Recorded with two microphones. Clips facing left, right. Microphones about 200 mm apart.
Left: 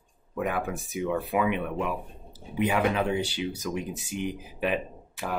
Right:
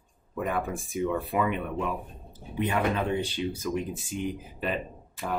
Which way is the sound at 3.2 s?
70° left (ahead or behind).